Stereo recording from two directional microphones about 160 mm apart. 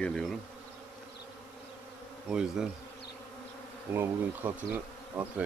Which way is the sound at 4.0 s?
10° right (ahead or behind).